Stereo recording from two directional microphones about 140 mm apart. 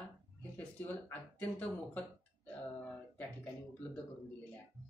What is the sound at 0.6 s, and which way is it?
Speech, 10° left (ahead or behind).